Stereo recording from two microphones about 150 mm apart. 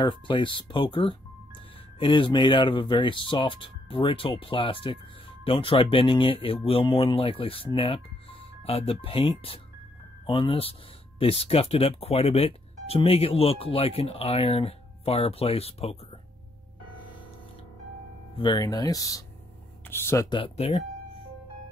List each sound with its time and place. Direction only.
0.0 s speech: 35° left (ahead or behind)
18.4 s speech: 30° left (ahead or behind)
20.2 s speech: 35° left (ahead or behind)